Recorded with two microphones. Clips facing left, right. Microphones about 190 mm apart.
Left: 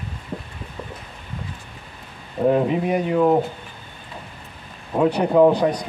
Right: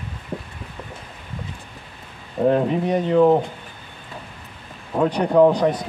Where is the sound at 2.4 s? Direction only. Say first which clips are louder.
Even; 5° left (ahead or behind).